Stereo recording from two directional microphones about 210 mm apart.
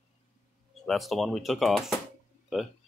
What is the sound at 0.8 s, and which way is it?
Speech, centre (ahead or behind).